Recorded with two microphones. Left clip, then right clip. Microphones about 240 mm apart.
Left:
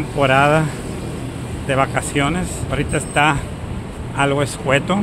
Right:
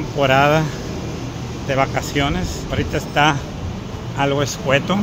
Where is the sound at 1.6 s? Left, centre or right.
Centre.